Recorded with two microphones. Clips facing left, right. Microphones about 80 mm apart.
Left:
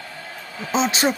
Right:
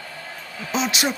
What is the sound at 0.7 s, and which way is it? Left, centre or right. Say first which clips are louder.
Speech: left 3 dB; left.